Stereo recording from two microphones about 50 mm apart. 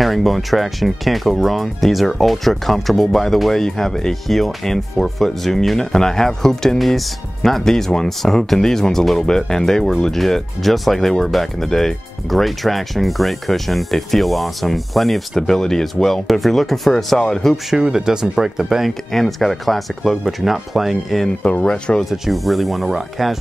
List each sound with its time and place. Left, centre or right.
0.0 s speech: centre
17.6 s speech: centre
18.9 s speech: centre
21.4 s speech: left
21.6 s speech: centre
22.1 s speech: centre